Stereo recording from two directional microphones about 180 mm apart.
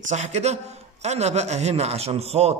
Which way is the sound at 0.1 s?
40° right (ahead or behind).